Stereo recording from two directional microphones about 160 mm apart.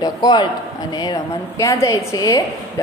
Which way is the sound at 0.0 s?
25° left (ahead or behind).